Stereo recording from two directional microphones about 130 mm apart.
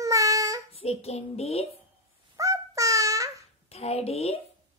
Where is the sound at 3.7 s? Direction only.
50° left (ahead or behind).